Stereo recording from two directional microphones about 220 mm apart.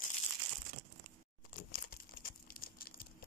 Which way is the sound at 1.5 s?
40° left (ahead or behind).